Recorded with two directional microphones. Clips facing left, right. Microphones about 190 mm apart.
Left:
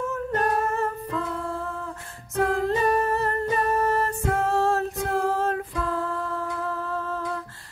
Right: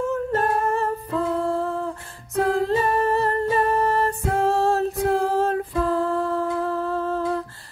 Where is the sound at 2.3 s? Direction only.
35° right (ahead or behind).